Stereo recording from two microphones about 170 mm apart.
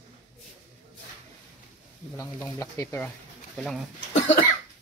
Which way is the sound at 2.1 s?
15° left (ahead or behind).